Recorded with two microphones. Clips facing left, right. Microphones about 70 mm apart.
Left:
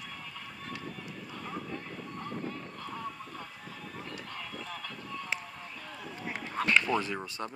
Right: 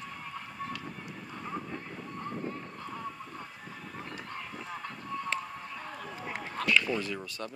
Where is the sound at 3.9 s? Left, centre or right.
Right.